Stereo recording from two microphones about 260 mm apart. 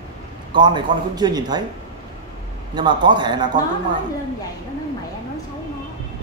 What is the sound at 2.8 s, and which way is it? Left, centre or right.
Speech, centre.